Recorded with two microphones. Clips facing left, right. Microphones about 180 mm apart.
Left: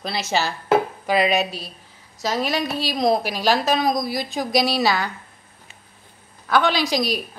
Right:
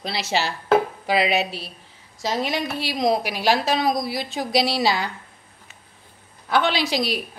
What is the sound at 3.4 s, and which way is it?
Speech, 25° right (ahead or behind).